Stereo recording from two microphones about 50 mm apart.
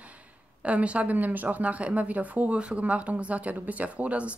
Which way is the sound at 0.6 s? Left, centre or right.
Right.